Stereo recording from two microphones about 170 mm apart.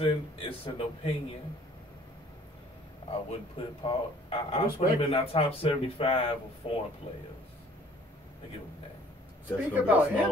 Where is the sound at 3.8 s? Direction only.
30° left (ahead or behind).